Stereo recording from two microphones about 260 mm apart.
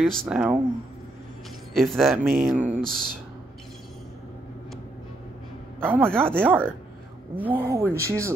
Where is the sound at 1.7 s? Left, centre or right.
Centre.